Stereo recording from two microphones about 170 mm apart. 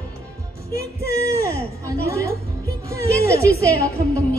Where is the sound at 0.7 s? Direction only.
65° left (ahead or behind).